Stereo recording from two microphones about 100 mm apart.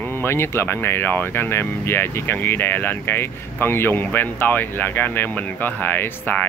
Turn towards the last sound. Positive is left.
turn(degrees=20)  # may be behind; listen again after turning